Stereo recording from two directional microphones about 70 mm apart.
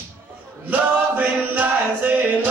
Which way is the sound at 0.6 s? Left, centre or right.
Right.